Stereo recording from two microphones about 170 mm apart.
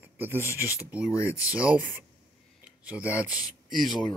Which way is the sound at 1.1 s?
20° left (ahead or behind).